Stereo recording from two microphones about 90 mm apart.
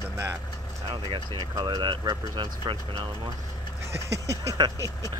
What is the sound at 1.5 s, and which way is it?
Speech, 40° right (ahead or behind).